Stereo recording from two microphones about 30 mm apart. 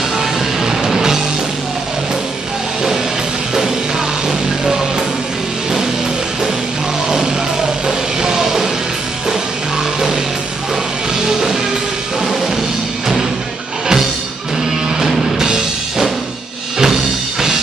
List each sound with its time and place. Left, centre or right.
0.2 s music: centre
4.3 s music: centre
8.2 s music: centre
15.3 s music: right